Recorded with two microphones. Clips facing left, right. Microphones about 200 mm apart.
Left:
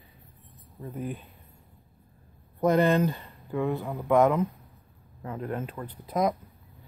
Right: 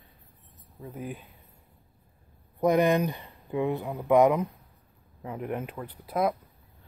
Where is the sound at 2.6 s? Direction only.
15° right (ahead or behind).